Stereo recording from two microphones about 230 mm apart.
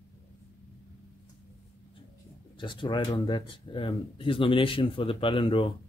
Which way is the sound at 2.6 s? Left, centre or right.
Left.